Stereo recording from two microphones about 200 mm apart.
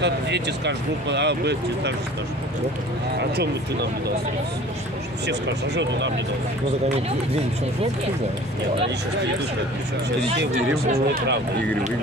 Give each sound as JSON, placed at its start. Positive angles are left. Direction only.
{"t": 0.0, "sound": "speech", "side_deg": -60}
{"t": 5.2, "sound": "speech", "side_deg": -60}